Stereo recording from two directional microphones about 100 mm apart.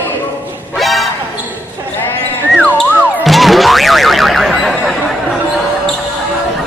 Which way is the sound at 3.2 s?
Centre (ahead or behind).